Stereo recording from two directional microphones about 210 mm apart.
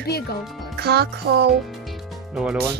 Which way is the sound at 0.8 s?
50° right (ahead or behind).